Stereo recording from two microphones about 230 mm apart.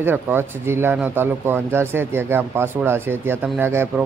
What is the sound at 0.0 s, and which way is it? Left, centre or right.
Speech, centre.